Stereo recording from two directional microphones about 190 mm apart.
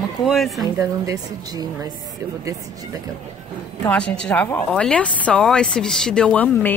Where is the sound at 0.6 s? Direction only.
20° right (ahead or behind).